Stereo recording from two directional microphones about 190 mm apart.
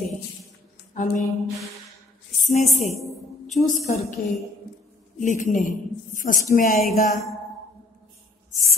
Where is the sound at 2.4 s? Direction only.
35° left (ahead or behind).